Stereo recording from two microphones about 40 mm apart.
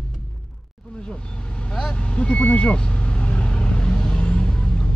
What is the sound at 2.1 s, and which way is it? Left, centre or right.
Vehicle, left.